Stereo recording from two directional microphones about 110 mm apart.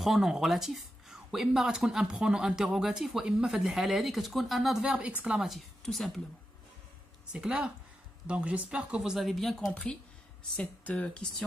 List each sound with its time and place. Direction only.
0.0 s speech: centre (ahead or behind)
7.3 s speech: 10° right (ahead or behind); by 11.4 s 10° left (ahead or behind)